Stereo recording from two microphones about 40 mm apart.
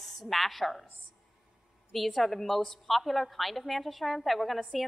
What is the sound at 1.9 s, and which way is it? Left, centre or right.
A woman's voice, centre.